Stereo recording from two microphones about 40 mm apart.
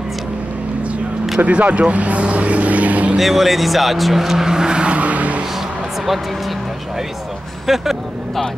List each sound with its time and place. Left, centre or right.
1.4 s speech: right
3.2 s vehicle: centre; by 5.4 s right
7.6 s speech: centre